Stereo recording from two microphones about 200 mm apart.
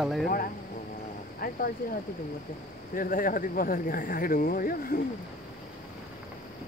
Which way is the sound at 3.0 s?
45° left (ahead or behind).